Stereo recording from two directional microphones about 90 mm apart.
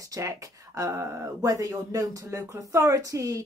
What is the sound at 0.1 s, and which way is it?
A woman's voice, 35° right (ahead or behind).